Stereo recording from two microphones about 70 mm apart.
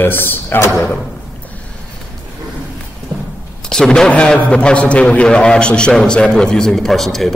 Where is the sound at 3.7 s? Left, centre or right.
Centre.